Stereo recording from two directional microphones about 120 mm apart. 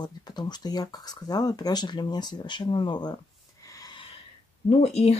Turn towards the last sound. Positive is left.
turn(degrees=60)  # may be behind; listen again after turning